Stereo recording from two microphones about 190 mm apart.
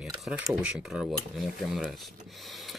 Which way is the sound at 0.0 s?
Centre (ahead or behind).